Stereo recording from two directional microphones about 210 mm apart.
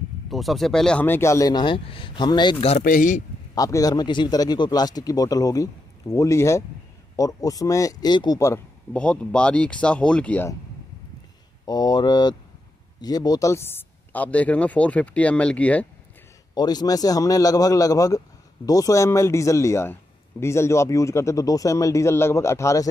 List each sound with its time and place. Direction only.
0.3 s a man's voice: centre (ahead or behind); by 2.5 s 20° left (ahead or behind)
2.8 s speech: 40° left (ahead or behind)
3.5 s a man's voice: 15° left (ahead or behind)
11.6 s a man's voice: 20° left (ahead or behind)
16.5 s a man's voice: 20° left (ahead or behind)